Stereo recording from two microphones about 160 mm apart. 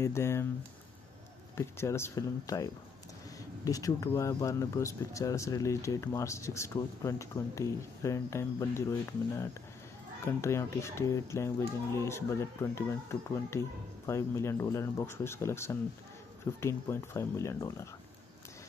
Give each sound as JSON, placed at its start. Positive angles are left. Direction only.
{"t": 0.0, "sound": "speech", "side_deg": 15}
{"t": 1.5, "sound": "speech", "side_deg": 15}
{"t": 10.2, "sound": "speech", "side_deg": 15}